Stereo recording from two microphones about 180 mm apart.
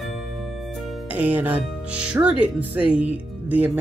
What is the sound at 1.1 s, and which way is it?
Speech, 10° right (ahead or behind).